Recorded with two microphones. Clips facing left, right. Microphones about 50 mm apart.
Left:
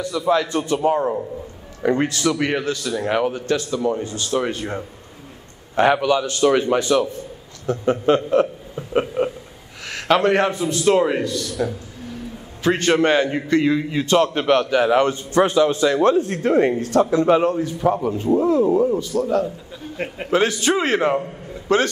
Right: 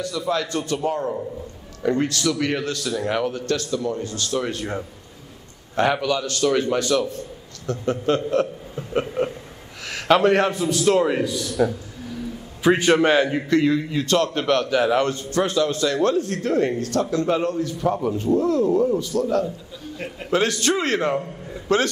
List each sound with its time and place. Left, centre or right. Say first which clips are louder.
0.0 s a man's voice: left 5 dB; centre
2.6 s a man's voice: left 2 dB; centre
4.5 s a man's voice: left 1 dB; centre
11.2 s a man's voice: right 2 dB; centre
17.9 s a man's voice: left 2 dB; centre